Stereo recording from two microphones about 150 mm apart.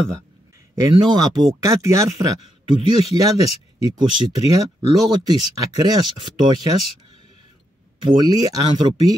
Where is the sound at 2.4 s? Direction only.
40° left (ahead or behind).